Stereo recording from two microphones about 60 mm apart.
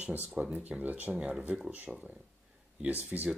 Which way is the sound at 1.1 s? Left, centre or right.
Centre.